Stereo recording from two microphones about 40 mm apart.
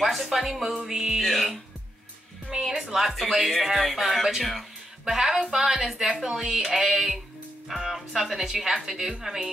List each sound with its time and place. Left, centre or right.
0.0 s speech: centre
1.2 s speech: centre
2.9 s speech: centre